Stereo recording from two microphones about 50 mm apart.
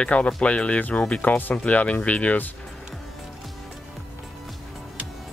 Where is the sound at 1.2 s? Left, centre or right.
Left.